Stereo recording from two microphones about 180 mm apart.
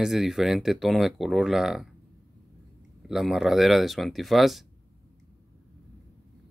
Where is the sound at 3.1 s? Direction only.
Centre (ahead or behind).